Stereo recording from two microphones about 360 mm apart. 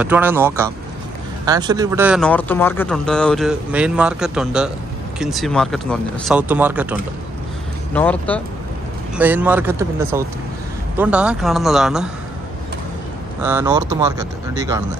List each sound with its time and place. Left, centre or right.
0.0 s speech: centre
13.4 s speech: centre